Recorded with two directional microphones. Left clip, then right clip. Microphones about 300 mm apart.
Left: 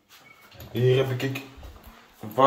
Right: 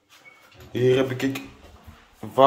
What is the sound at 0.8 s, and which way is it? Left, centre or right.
Speech, centre.